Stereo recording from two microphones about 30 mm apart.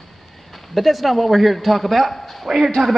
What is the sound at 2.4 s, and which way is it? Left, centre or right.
Speech, centre.